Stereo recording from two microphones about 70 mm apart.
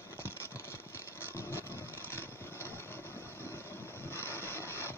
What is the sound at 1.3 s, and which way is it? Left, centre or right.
Music, left.